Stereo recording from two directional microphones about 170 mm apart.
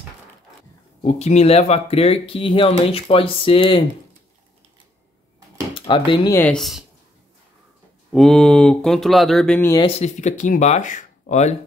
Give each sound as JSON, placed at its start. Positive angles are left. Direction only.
{"t": 1.0, "sound": "speech", "side_deg": 40}
{"t": 5.8, "sound": "speech", "side_deg": 30}
{"t": 6.3, "sound": "speech", "side_deg": 5}
{"t": 8.1, "sound": "speech", "side_deg": 0}
{"t": 9.8, "sound": "speech", "side_deg": 35}